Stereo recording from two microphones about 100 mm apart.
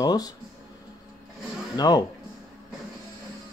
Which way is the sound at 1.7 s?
40° left (ahead or behind).